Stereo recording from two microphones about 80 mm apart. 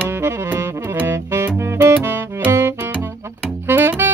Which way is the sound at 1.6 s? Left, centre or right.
Right.